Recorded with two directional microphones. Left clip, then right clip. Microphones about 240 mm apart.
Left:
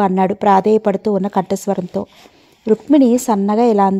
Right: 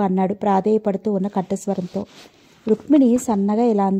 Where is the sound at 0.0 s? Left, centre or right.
Left.